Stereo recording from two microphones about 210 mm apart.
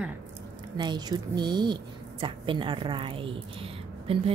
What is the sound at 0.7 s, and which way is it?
A woman's voice, 20° right (ahead or behind).